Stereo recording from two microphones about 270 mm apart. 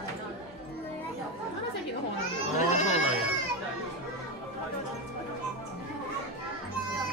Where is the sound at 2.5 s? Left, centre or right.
Left.